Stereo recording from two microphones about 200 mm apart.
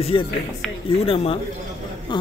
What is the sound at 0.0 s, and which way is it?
Speech, 25° left (ahead or behind).